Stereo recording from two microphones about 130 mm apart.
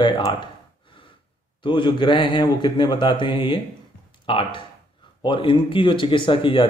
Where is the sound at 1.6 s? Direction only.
40° left (ahead or behind).